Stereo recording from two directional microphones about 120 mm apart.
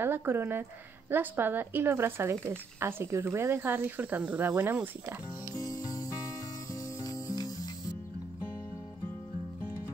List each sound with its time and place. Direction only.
0.0 s a woman's voice: 20° right (ahead or behind)
5.6 s music: 30° left (ahead or behind)